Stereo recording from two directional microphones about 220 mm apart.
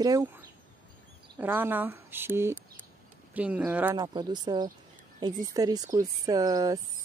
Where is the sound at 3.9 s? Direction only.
20° right (ahead or behind).